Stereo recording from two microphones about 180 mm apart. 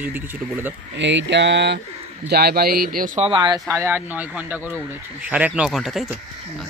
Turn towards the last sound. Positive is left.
turn(degrees=0)  # may be behind; listen again after turning